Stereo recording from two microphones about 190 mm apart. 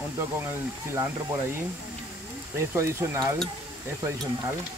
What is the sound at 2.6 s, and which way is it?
Speech, 15° right (ahead or behind).